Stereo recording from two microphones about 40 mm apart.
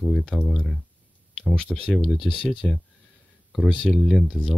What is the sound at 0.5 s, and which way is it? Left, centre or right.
Speech, centre.